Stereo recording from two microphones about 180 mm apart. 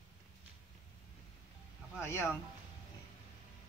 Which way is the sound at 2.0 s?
15° left (ahead or behind).